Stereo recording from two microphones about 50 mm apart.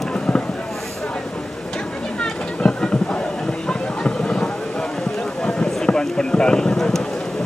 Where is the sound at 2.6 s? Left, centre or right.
Centre.